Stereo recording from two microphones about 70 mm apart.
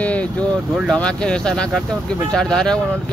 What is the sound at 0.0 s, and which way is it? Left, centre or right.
Vehicle, centre.